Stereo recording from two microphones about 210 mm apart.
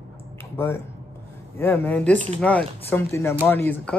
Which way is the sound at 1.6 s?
10° left (ahead or behind).